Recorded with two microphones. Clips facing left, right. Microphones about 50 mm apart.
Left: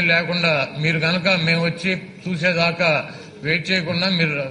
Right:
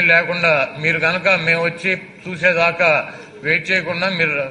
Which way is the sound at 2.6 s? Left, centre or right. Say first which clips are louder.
Right 4 dB; centre.